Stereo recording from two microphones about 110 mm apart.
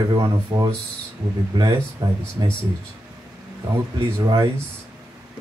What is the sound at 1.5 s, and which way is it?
Speech, 40° right (ahead or behind).